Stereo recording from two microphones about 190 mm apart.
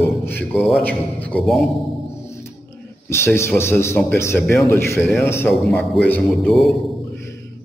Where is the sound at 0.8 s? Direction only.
10° left (ahead or behind).